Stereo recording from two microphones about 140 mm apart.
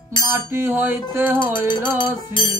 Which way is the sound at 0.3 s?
15° right (ahead or behind).